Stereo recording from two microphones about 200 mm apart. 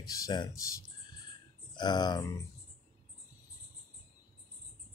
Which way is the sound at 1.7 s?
20° left (ahead or behind).